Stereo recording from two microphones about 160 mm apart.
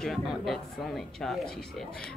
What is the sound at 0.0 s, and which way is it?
Speech, centre (ahead or behind).